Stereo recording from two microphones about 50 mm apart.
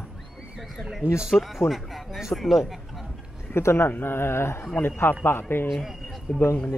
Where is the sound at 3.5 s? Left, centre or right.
Left.